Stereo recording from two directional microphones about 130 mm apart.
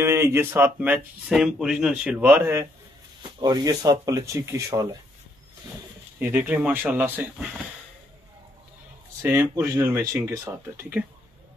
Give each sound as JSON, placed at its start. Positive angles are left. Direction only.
{"t": 0.0, "sound": "speech", "side_deg": -20}
{"t": 3.2, "sound": "speech", "side_deg": -35}
{"t": 6.1, "sound": "speech", "side_deg": -10}
{"t": 9.2, "sound": "speech", "side_deg": -20}